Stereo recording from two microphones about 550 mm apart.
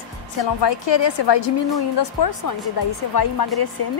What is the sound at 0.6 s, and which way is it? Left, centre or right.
A woman's voice, left.